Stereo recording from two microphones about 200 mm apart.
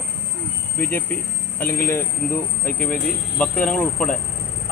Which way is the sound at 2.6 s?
45° left (ahead or behind).